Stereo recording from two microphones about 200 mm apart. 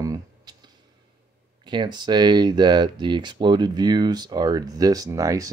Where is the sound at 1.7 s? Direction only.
20° right (ahead or behind).